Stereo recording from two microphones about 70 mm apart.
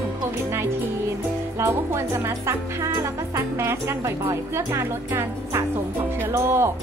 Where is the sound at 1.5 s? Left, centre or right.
Right.